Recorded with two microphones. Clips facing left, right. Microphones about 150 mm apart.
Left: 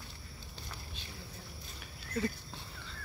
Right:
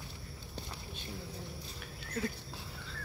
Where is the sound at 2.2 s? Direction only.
Centre (ahead or behind).